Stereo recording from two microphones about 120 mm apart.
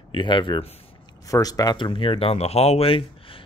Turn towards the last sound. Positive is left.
turn(degrees=55)  # may be behind; listen again after turning